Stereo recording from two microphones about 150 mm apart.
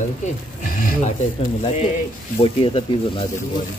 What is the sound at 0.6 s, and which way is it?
Speech, 65° left (ahead or behind).